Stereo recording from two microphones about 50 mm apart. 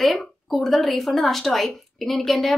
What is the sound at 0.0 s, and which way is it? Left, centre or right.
A woman's voice, centre.